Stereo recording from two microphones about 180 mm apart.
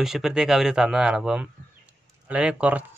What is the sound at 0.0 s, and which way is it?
Speech, centre (ahead or behind).